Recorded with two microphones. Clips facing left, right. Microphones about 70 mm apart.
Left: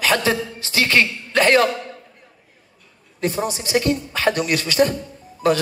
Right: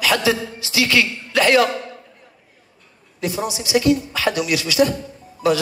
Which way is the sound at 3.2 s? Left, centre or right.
Left.